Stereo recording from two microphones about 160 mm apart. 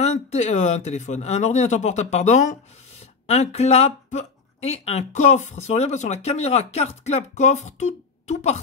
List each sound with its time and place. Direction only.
0.0 s speech: 45° left (ahead or behind)